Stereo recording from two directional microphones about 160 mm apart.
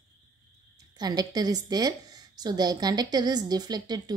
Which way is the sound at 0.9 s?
25° right (ahead or behind).